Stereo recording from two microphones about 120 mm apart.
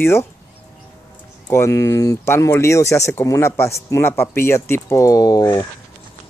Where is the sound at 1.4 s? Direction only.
20° left (ahead or behind).